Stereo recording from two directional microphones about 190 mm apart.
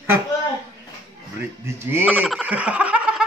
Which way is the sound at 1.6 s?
15° right (ahead or behind).